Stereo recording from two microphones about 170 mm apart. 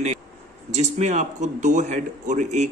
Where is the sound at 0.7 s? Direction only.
40° right (ahead or behind).